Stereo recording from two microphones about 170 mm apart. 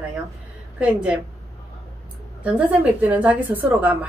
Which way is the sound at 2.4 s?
10° right (ahead or behind).